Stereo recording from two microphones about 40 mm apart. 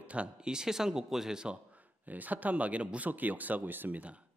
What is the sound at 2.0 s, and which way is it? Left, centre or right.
Speech, right.